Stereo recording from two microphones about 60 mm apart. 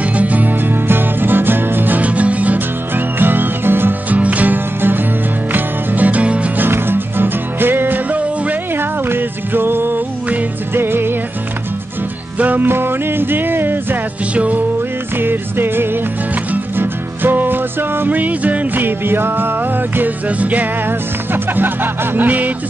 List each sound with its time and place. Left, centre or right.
0.2 s music: right
4.1 s music: right
6.6 s music: right
9.1 s music: right
12.4 s music: right
14.3 s music: right
15.1 s music: right
20.0 s music: right